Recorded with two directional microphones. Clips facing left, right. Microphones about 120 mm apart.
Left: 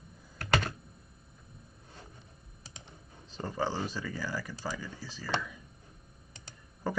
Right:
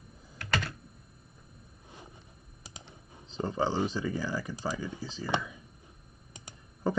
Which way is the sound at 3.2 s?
20° right (ahead or behind).